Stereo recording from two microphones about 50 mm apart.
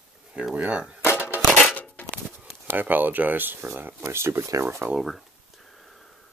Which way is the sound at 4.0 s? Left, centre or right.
Right.